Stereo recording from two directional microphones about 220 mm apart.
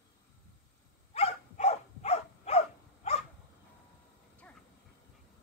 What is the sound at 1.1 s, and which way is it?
Dog, 30° left (ahead or behind).